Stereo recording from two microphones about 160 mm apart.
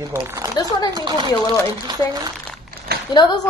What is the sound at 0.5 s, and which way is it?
Speech, 25° left (ahead or behind).